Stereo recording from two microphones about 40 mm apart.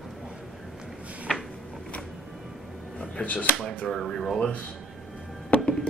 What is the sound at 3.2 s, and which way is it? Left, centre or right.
Speech, left.